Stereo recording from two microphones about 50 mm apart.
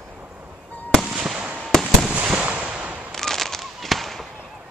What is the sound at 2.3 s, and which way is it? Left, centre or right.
Fireworks, right.